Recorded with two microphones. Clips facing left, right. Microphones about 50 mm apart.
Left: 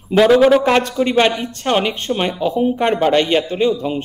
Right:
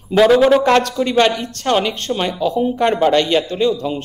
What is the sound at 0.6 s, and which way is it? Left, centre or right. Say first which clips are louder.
A man's voice: right 1 dB; centre.